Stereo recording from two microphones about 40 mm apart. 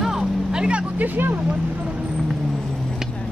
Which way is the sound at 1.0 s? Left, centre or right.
Right.